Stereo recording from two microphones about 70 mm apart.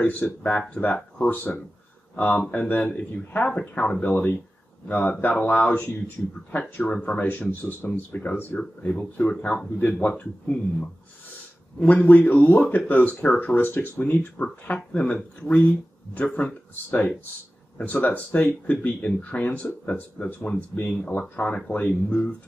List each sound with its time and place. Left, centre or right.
0.0 s speech: left
8.5 s speech: centre
11.8 s speech: left
16.2 s speech: left
21.2 s speech: centre